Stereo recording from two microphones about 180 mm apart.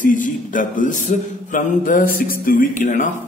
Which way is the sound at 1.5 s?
50° left (ahead or behind).